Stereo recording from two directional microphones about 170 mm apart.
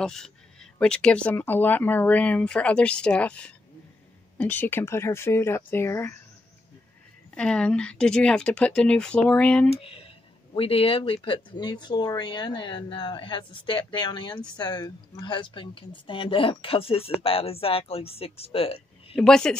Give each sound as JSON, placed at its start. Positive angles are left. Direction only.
{"t": 0.0, "sound": "speech", "side_deg": 5}
{"t": 7.3, "sound": "speech", "side_deg": 5}
{"t": 9.7, "sound": "a woman's voice", "side_deg": 35}
{"t": 19.1, "sound": "speech", "side_deg": 5}